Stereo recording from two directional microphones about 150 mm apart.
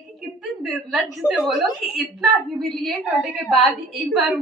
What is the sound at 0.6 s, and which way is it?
A woman's voice, 5° right (ahead or behind).